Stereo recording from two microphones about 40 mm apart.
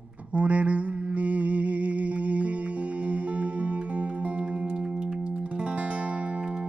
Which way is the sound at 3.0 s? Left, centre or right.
Right.